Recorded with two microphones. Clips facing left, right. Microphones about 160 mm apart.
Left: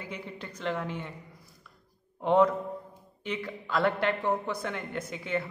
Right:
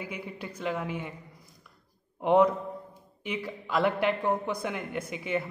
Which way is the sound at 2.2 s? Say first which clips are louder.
Right 1 dB; 10° right (ahead or behind).